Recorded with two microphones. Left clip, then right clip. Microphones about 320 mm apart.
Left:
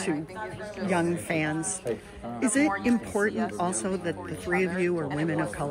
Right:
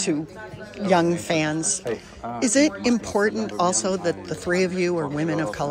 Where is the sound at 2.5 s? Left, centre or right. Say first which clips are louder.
Right 5 dB; centre.